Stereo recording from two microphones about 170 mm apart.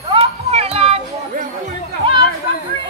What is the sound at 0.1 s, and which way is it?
Children playing, 35° right (ahead or behind).